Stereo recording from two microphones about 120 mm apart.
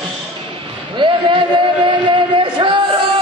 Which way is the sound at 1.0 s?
40° right (ahead or behind).